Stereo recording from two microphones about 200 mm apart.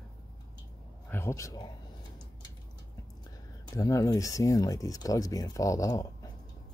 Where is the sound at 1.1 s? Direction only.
15° left (ahead or behind).